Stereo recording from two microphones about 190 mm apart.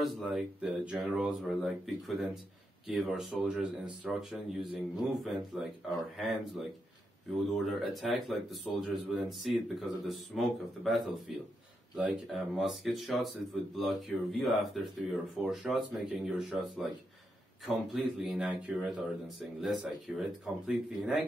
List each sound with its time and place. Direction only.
0.0 s speech: centre (ahead or behind)
7.5 s speech: centre (ahead or behind)
18.2 s speech: centre (ahead or behind)